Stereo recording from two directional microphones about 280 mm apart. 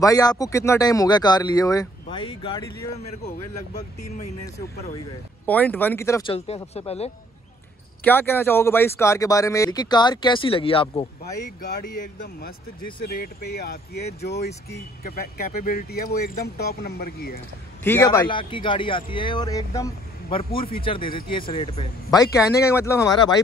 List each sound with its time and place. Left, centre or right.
0.0 s speech: centre
5.5 s speech: centre; by 7.1 s left
8.0 s speech: centre
11.8 s speech: left
12.4 s speech: left
17.8 s speech: centre